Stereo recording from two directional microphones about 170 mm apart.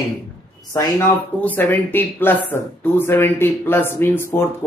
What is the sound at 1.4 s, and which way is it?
Speech, 10° left (ahead or behind).